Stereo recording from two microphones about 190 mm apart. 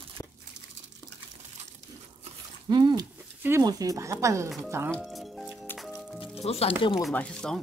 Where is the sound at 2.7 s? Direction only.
20° right (ahead or behind).